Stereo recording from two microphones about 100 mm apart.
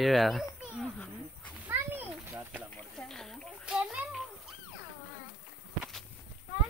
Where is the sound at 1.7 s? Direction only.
20° right (ahead or behind).